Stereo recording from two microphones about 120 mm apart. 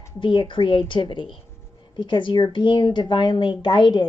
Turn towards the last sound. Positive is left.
turn(degrees=40)  # may be behind; listen again after turning